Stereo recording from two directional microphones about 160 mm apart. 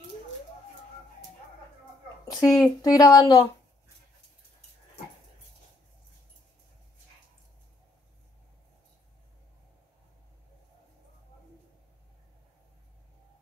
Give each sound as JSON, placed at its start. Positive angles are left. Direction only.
{"t": 2.4, "sound": "speech", "side_deg": 5}
{"t": 2.8, "sound": "speech", "side_deg": 25}